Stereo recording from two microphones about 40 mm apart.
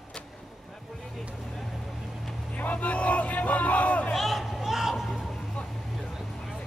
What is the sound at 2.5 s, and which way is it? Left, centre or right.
Hubbub, left.